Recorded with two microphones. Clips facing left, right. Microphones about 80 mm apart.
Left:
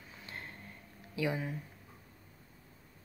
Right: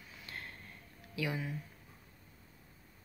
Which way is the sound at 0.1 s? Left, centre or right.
Left.